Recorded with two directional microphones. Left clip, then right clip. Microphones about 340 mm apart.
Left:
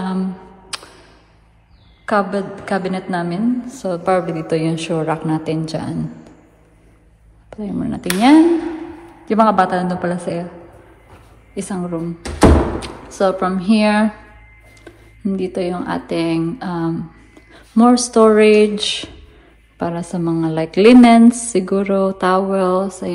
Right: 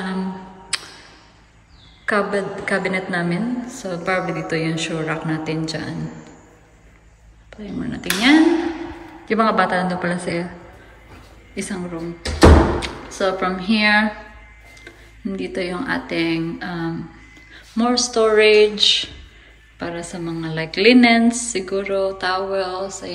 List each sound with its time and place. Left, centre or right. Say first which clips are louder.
0.7 s a sound: right 3 dB; centre
2.0 s a woman's voice: left 2 dB; centre
7.4 s a woman's voice: left 5 dB; centre
11.5 s a woman's voice: left 4 dB; centre